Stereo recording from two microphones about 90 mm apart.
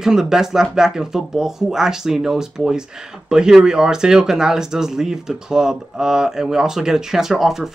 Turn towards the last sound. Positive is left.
turn(degrees=-5)  # may be behind; listen again after turning